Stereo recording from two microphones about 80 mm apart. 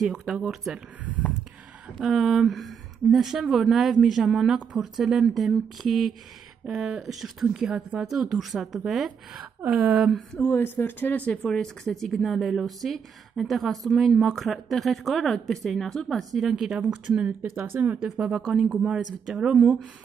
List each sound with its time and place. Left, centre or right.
0.0 s speech: centre
2.0 s speech: centre
10.5 s speech: left; by 16.7 s centre
16.7 s speech: right
18.6 s speech: centre